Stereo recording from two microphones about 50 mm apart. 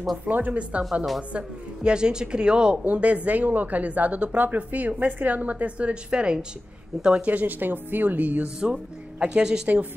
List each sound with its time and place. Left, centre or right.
0.2 s a woman's voice: right
2.8 s a woman's voice: right
7.2 s speech: right
8.5 s a woman's voice: centre